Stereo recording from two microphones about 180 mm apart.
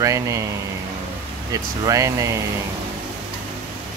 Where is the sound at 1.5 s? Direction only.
20° right (ahead or behind).